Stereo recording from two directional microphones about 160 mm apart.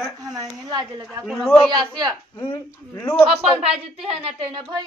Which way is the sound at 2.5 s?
15° left (ahead or behind).